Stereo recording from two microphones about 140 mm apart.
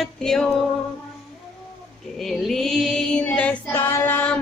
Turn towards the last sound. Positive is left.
turn(degrees=10)  # may be behind; listen again after turning